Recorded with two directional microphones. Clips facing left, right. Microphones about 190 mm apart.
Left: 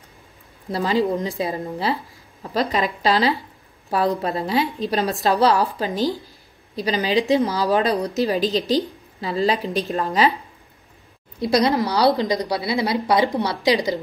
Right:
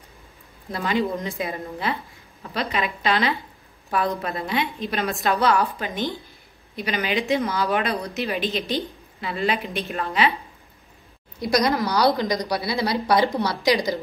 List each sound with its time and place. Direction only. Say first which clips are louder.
0.7 s a woman's voice: left 4 dB; 35° left (ahead or behind)
11.3 s a woman's voice: left 3 dB; 25° left (ahead or behind)